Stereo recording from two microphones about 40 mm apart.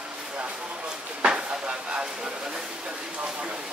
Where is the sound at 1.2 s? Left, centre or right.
Right.